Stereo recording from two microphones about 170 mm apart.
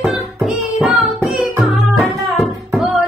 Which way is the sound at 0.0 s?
Centre (ahead or behind).